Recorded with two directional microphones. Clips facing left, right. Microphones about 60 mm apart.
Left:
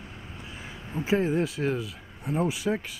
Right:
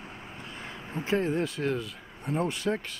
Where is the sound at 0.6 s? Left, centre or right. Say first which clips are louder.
Left 2 dB; centre.